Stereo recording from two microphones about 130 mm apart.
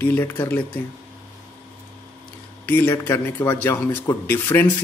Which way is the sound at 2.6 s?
15° left (ahead or behind).